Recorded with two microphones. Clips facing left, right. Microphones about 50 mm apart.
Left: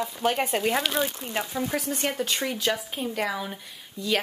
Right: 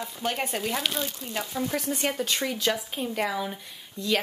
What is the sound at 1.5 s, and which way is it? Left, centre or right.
Speech, centre.